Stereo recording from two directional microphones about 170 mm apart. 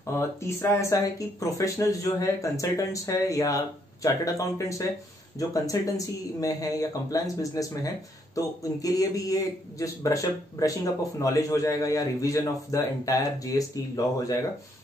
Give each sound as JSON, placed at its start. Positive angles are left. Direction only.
{"t": 0.0, "sound": "speech", "side_deg": 15}